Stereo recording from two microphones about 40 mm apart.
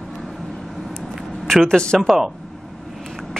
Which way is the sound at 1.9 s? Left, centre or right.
Centre.